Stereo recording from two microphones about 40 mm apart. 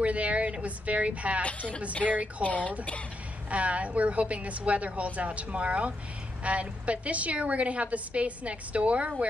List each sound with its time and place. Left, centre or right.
0.0 s a sound: right
2.0 s speech: centre
2.4 s speech: left
3.4 s a woman's voice: right